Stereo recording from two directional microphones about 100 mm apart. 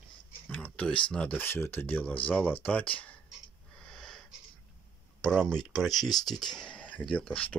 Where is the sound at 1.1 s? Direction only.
15° left (ahead or behind).